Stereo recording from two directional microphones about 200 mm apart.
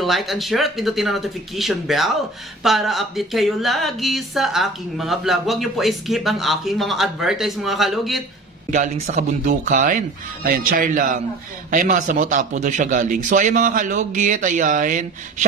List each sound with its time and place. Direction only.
0.0 s speech: centre (ahead or behind)
8.6 s a man's voice: 40° right (ahead or behind)